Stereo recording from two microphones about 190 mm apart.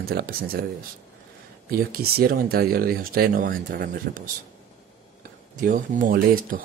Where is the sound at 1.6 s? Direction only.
50° right (ahead or behind).